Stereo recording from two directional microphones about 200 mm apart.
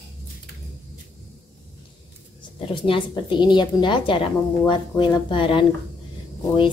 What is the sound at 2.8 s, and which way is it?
A woman's voice, 25° left (ahead or behind).